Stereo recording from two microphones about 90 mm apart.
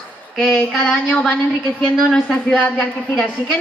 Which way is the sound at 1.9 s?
5° left (ahead or behind).